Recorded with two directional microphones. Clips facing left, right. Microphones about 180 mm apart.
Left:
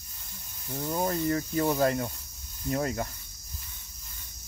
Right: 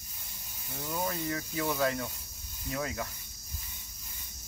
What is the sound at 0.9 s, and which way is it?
Speech, 45° left (ahead or behind).